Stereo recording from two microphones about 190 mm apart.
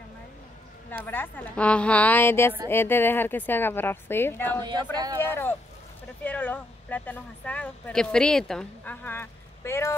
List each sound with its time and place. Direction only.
1.0 s speech: 10° left (ahead or behind)
4.9 s speech: 20° right (ahead or behind)
5.2 s speech: 10° left (ahead or behind)